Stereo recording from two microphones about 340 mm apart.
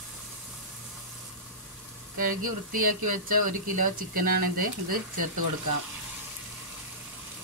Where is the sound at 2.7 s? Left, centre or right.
Right.